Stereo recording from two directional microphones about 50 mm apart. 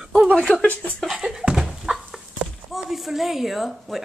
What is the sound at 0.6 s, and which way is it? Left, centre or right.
Speech, left.